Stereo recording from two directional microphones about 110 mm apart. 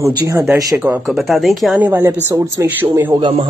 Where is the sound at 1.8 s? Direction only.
15° right (ahead or behind).